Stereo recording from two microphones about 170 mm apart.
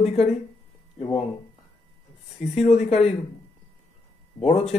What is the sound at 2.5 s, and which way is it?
Speech, 40° left (ahead or behind).